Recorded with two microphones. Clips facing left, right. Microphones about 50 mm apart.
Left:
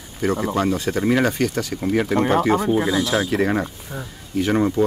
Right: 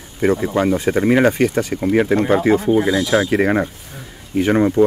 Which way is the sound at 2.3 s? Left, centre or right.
Centre.